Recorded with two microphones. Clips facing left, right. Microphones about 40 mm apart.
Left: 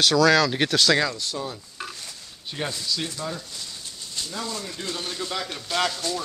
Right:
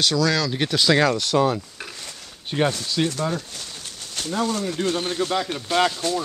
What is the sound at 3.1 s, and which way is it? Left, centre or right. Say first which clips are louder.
Speech: right 6 dB; right.